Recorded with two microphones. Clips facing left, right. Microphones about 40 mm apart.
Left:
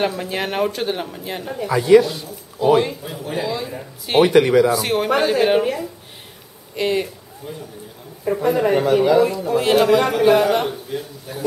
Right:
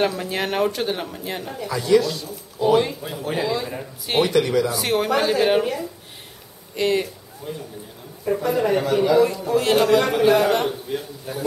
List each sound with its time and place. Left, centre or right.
0.0 s speech: centre
1.6 s speech: left
2.6 s speech: centre
4.2 s speech: left
4.6 s speech: centre
10.9 s speech: centre